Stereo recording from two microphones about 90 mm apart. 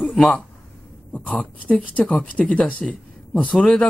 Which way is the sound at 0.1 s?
5° left (ahead or behind).